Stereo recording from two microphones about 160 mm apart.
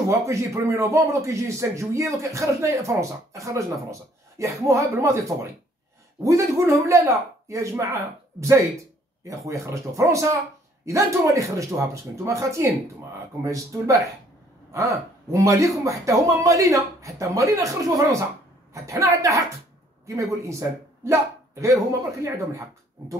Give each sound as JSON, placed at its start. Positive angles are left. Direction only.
{"t": 0.1, "sound": "a man's voice", "side_deg": -20}
{"t": 6.2, "sound": "a man's voice", "side_deg": -20}